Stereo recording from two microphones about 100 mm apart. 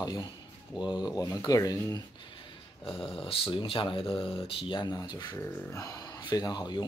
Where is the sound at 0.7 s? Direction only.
45° left (ahead or behind).